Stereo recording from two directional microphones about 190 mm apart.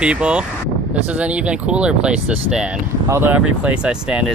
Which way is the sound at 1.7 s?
5° right (ahead or behind).